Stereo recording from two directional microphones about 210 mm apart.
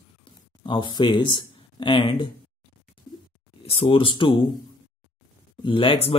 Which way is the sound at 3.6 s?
30° left (ahead or behind).